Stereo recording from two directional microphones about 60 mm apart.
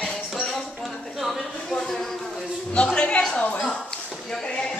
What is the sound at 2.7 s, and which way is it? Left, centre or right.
Music, centre.